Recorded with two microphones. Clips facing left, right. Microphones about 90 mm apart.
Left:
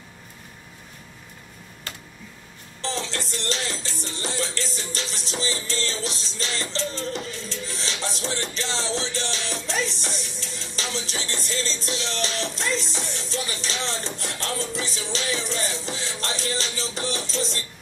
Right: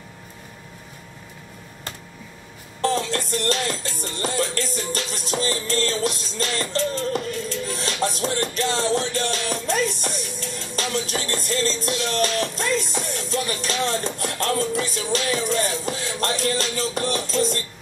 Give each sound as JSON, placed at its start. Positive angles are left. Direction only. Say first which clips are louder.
{"t": 2.8, "sound": "music", "louder": "right 7 dB", "side_deg": -50}